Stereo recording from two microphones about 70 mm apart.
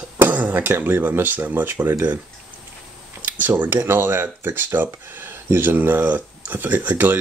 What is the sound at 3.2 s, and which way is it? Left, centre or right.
Speech, right.